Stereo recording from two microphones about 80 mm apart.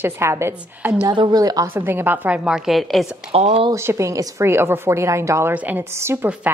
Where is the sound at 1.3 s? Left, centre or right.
Right.